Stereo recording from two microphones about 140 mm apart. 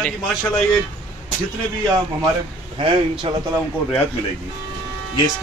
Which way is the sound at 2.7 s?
40° right (ahead or behind).